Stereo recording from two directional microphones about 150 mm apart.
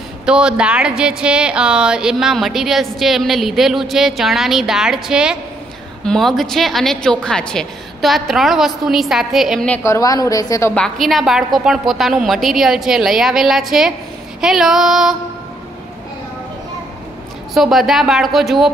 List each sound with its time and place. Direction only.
0.2 s speech: 5° right (ahead or behind)
9.7 s a woman's voice: 20° left (ahead or behind)
10.7 s speech: 5° left (ahead or behind)
17.6 s speech: centre (ahead or behind)